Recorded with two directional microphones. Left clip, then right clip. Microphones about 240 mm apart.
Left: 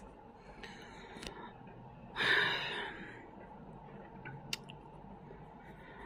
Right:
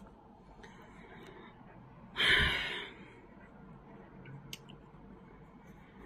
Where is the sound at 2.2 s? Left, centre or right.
Centre.